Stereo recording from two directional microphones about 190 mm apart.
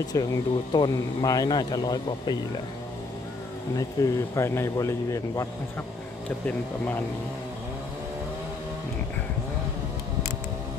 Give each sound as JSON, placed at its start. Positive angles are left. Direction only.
{"t": 0.0, "sound": "speech", "side_deg": 20}
{"t": 3.7, "sound": "speech", "side_deg": 15}